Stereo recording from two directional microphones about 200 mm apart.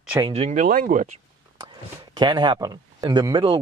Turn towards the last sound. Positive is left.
turn(degrees=-25)  # may be behind; listen again after turning